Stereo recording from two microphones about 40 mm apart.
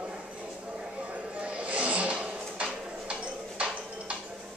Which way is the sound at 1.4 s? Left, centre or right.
Right.